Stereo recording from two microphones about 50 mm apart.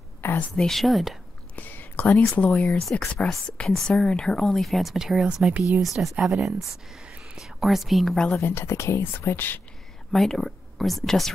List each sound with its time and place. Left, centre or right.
0.2 s a sound: left
0.6 s speech: centre
1.5 s speech: left
2.8 s a woman's voice: centre
4.9 s speech: centre
7.0 s whispering: centre
8.4 s speech: left
10.1 s speech: centre